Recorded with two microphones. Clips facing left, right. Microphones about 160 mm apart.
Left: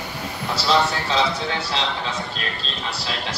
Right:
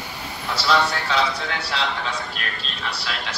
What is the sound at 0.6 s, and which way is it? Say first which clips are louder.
A man's voice: left 1 dB; 30° left (ahead or behind).